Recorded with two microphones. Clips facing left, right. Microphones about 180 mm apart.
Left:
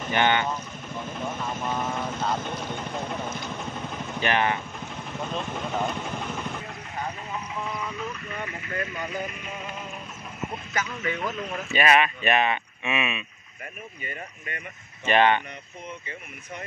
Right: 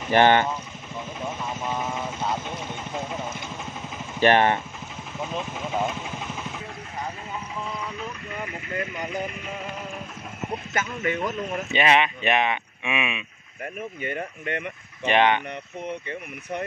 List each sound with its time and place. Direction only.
0.1 s speech: 40° right (ahead or behind)
1.6 s speech: 5° right (ahead or behind)
4.2 s speech: 40° right (ahead or behind)
5.2 s speech: 5° right (ahead or behind)
8.4 s speech: 20° right (ahead or behind)
11.1 s speech: 20° right (ahead or behind)
14.0 s speech: 65° right (ahead or behind)
15.0 s speech: 15° right (ahead or behind)